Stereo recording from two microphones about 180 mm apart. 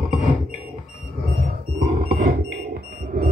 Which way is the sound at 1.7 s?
45° right (ahead or behind).